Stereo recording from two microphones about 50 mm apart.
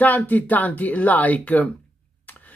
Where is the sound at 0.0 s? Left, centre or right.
Left.